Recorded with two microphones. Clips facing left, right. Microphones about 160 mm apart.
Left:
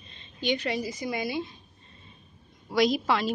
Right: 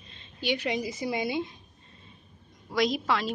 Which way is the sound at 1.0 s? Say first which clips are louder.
Right 1 dB; 20° right (ahead or behind).